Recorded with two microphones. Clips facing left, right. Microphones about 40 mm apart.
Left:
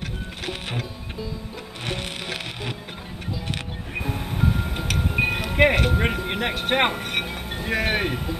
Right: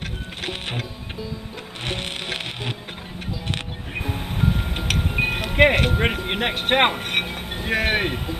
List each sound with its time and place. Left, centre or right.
0.5 s music: right
1.9 s music: right
3.9 s music: centre
5.9 s speech: centre